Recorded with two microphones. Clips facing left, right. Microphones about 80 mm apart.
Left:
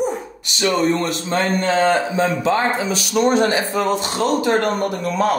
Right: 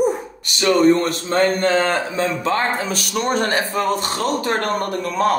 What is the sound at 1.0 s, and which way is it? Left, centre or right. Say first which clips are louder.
Speech: right 2 dB; right.